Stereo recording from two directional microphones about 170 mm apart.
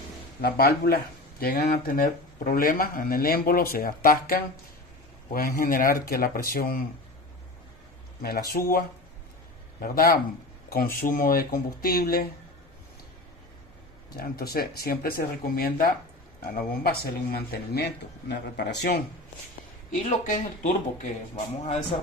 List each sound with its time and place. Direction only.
0.4 s speech: 65° left (ahead or behind)
8.2 s speech: 65° left (ahead or behind)
14.1 s speech: 60° left (ahead or behind)
20.2 s speech: 50° left (ahead or behind)